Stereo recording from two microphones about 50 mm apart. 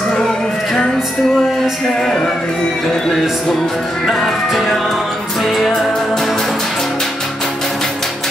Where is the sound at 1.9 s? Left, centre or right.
Centre.